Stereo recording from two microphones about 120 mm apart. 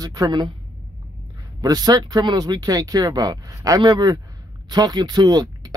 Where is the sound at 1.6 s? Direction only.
35° right (ahead or behind).